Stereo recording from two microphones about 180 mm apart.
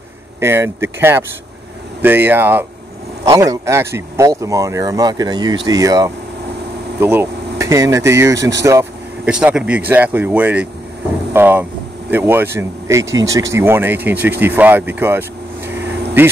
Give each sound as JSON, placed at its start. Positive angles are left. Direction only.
{"t": 0.4, "sound": "speech", "side_deg": -15}
{"t": 8.6, "sound": "vehicle", "side_deg": -15}
{"t": 9.3, "sound": "speech", "side_deg": -5}